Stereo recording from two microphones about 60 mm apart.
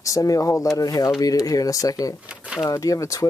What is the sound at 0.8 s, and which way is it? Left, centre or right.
Speech, left.